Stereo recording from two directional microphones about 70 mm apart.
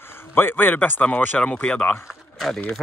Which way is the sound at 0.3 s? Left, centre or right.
Left.